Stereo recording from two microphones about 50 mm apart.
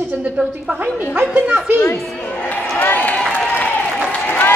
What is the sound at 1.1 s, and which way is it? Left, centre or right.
Speech, right.